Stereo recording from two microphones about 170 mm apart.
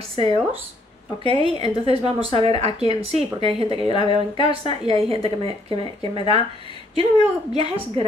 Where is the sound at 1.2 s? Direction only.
30° left (ahead or behind).